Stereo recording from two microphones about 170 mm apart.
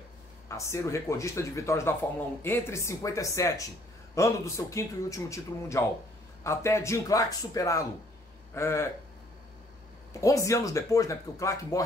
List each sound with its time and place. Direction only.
0.5 s speech: 15° left (ahead or behind)
10.2 s speech: 20° left (ahead or behind)